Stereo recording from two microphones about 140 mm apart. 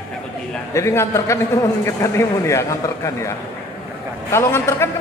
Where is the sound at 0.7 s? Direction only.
20° left (ahead or behind).